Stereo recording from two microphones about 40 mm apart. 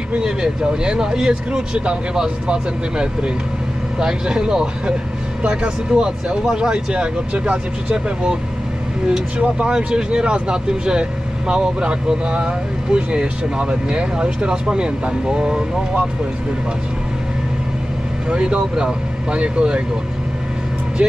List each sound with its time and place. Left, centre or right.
0.1 s speech: right
9.4 s speech: right
18.3 s speech: right